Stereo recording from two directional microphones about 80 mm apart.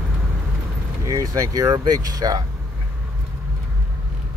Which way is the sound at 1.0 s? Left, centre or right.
Right.